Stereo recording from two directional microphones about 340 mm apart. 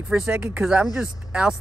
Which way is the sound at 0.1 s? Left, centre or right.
Centre.